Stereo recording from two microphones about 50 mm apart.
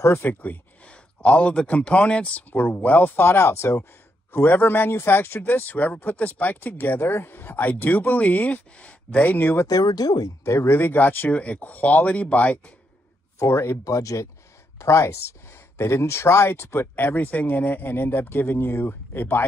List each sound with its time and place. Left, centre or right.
0.2 s speech: left
2.5 s speech: left
4.3 s speech: left
5.5 s speech: left
10.4 s speech: left
10.8 s speech: left
11.3 s speech: left
13.4 s speech: left
14.8 s speech: left
15.8 s speech: left